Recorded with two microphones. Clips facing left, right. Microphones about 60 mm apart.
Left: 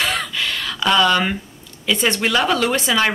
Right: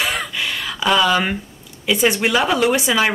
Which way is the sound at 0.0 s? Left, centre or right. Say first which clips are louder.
Even; centre.